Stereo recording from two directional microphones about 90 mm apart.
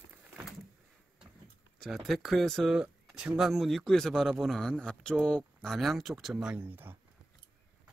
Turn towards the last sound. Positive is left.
turn(degrees=-25)  # may be behind; listen again after turning